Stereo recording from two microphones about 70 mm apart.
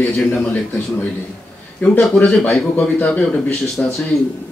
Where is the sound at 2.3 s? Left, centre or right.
Centre.